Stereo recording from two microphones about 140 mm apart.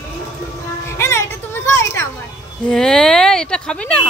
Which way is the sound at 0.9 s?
20° left (ahead or behind).